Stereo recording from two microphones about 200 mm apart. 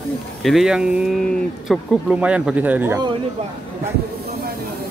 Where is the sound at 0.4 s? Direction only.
Centre (ahead or behind).